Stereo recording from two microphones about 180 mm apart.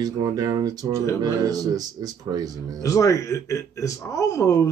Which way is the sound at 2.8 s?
15° left (ahead or behind).